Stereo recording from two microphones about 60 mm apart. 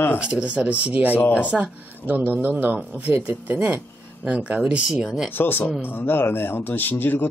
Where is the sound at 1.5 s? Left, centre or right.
Right.